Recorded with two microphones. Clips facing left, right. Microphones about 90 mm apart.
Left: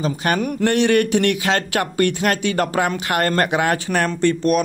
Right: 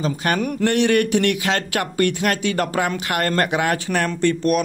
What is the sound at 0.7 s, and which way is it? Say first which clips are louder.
Speech: left 1 dB; 35° left (ahead or behind).